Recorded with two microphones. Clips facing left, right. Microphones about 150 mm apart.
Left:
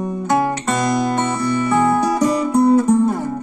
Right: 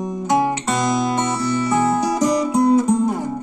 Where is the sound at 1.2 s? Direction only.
55° left (ahead or behind).